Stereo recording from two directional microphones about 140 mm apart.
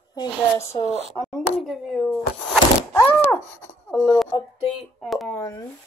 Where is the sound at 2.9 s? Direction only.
15° left (ahead or behind).